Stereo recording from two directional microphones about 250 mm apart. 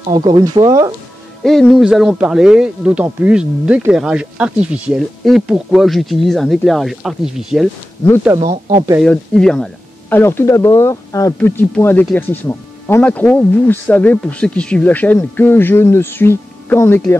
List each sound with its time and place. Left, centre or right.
0.1 s speech: centre
1.4 s speech: centre
8.4 s speech: right
9.0 s speech: centre